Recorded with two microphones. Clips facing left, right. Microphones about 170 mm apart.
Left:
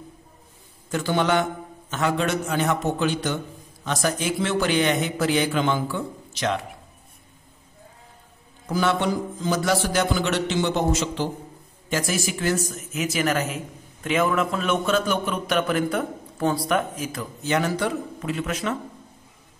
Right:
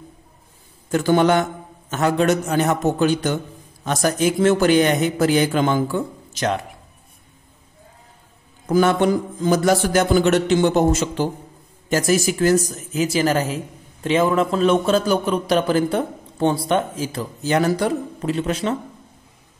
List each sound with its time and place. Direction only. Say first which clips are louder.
0.9 s a man's voice: right 6 dB; 45° right (ahead or behind)
8.6 s a man's voice: right 6 dB; 50° right (ahead or behind); by 18.8 s 30° right (ahead or behind)